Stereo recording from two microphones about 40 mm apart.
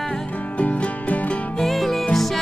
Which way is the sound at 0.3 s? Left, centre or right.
Left.